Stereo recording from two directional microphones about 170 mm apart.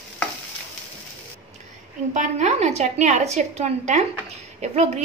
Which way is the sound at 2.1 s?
45° right (ahead or behind).